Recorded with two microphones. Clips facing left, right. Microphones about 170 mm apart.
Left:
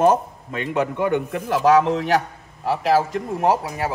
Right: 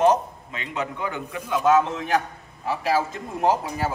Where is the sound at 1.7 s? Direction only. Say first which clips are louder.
Left 3 dB; 80° left.